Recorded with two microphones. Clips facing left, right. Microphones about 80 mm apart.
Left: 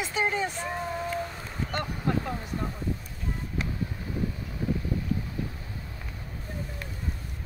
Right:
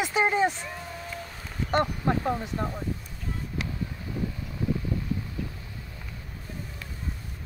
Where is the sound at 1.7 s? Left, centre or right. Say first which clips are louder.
Right 5 dB; right.